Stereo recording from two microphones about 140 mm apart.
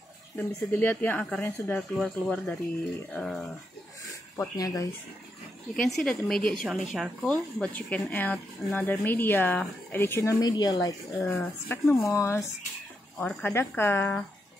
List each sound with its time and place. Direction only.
0.4 s a woman's voice: 15° left (ahead or behind)
4.4 s speech: 25° left (ahead or behind)
5.8 s a woman's voice: centre (ahead or behind); by 11.0 s 25° left (ahead or behind)
11.2 s a woman's voice: 15° left (ahead or behind)